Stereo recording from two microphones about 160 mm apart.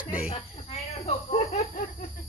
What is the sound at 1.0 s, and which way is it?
Speech, 40° left (ahead or behind).